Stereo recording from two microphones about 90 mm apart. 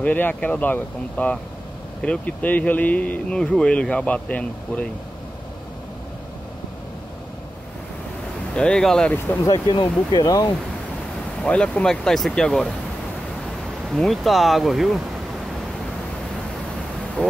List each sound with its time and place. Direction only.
0.0 s speech: 20° left (ahead or behind)
8.5 s speech: 10° left (ahead or behind)
9.5 s speech: 55° left (ahead or behind)
11.4 s speech: 10° left (ahead or behind)
13.8 s speech: centre (ahead or behind)
17.2 s vehicle: 10° left (ahead or behind)